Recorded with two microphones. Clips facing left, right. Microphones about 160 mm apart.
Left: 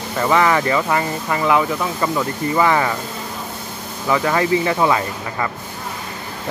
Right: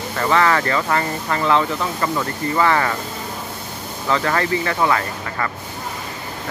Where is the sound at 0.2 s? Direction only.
15° left (ahead or behind).